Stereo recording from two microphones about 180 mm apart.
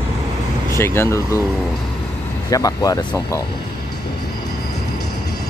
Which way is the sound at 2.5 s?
20° left (ahead or behind).